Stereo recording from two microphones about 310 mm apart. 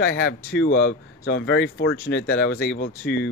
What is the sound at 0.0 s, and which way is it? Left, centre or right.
Speech, left.